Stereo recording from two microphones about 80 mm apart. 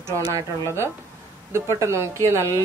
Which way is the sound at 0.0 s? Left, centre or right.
Right.